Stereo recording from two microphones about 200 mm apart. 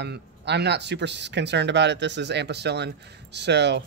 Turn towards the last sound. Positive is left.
turn(degrees=-60)  # may be behind; listen again after turning